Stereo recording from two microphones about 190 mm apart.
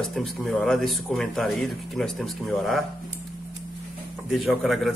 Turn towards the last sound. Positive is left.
turn(degrees=0)  # may be behind; listen again after turning